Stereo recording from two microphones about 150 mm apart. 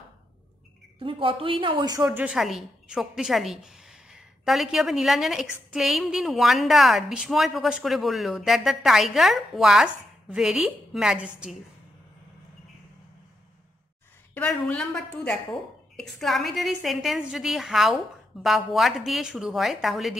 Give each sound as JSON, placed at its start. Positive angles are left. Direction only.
{"t": 0.9, "sound": "a woman's voice", "side_deg": -35}
{"t": 2.0, "sound": "a woman's voice", "side_deg": -10}
{"t": 14.3, "sound": "a woman's voice", "side_deg": 5}